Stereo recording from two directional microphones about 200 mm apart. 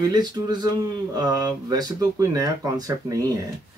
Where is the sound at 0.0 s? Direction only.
20° right (ahead or behind).